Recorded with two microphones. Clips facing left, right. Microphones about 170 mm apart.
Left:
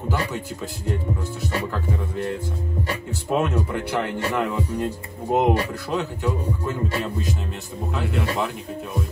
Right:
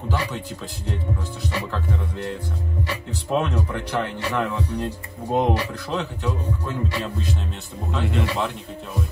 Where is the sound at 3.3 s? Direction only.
5° left (ahead or behind).